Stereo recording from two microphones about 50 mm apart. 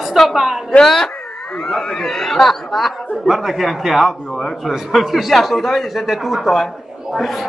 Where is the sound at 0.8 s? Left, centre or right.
Centre.